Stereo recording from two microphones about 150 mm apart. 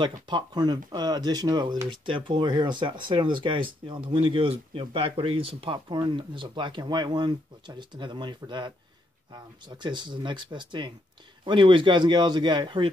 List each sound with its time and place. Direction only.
0.0 s speech: 30° right (ahead or behind)